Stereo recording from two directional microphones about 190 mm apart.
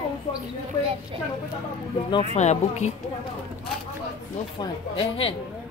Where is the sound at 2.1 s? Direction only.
35° left (ahead or behind).